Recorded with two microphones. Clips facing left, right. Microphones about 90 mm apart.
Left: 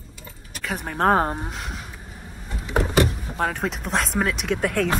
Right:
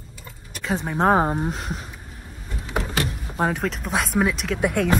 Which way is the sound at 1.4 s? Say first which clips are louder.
Right 5 dB; 35° right (ahead or behind).